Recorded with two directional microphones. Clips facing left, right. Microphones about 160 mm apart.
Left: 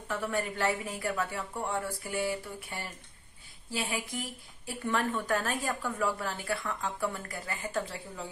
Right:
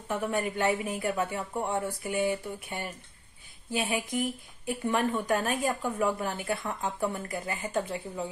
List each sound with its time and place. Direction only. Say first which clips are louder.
0.1 s a woman's voice: right 3 dB; 20° right (ahead or behind)